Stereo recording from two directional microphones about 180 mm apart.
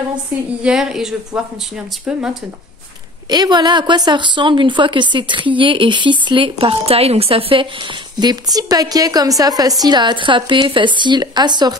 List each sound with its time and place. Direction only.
0.6 s speech: 5° right (ahead or behind)
3.3 s speech: 25° right (ahead or behind)